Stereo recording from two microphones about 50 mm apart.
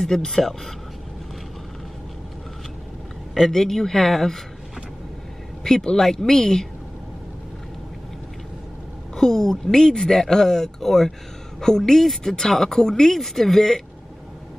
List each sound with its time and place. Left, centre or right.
0.0 s speech: centre
3.4 s speech: centre
5.6 s speech: centre
9.1 s speech: centre